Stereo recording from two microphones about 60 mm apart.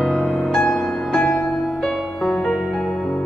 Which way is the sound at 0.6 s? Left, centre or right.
Centre.